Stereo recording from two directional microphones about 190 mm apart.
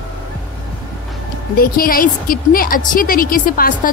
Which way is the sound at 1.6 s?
50° left (ahead or behind).